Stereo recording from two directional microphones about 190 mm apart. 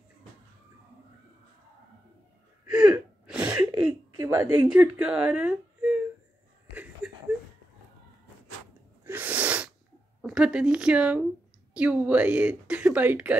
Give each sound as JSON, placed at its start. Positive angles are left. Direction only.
{"t": 2.6, "sound": "gasp", "side_deg": -5}
{"t": 3.3, "sound": "a sound", "side_deg": -10}
{"t": 4.6, "sound": "speech", "side_deg": -10}
{"t": 6.7, "sound": "a sound", "side_deg": -10}
{"t": 9.0, "sound": "sneeze", "side_deg": -10}
{"t": 10.2, "sound": "speech", "side_deg": -5}